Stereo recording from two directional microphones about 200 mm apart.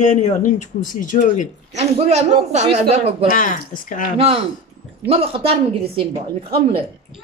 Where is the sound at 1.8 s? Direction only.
30° right (ahead or behind).